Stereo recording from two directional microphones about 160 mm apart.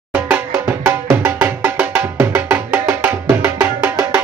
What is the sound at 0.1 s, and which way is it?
Music, 10° right (ahead or behind).